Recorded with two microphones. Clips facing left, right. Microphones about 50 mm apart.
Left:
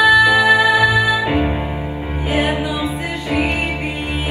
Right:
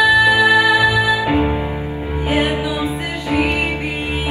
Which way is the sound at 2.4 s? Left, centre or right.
Left.